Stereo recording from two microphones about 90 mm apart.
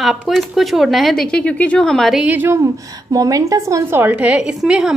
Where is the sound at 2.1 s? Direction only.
20° right (ahead or behind).